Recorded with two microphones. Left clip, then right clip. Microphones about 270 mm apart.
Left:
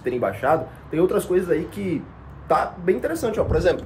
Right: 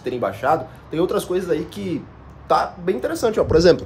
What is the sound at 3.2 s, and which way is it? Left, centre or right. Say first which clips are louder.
Speech: right 5 dB; right.